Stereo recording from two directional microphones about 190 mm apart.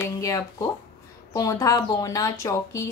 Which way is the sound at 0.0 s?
15° left (ahead or behind).